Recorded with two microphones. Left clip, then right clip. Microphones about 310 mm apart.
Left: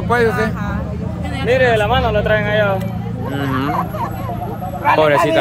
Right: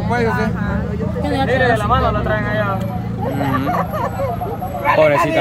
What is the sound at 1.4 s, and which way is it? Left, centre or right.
Speech, left.